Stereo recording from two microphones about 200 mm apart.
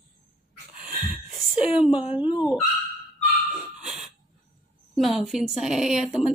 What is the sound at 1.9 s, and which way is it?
Speech, 25° left (ahead or behind).